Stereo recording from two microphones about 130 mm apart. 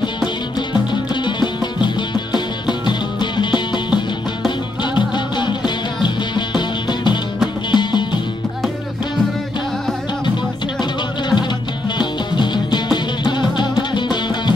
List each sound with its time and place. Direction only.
1.2 s music: 35° left (ahead or behind)
10.8 s music: 35° left (ahead or behind)